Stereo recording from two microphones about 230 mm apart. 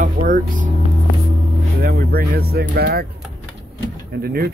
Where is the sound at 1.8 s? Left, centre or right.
Right.